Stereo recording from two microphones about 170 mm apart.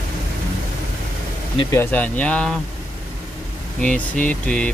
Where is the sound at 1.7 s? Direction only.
10° left (ahead or behind).